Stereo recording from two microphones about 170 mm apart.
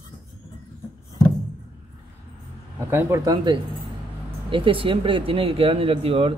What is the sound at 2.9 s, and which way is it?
Speech, 20° right (ahead or behind).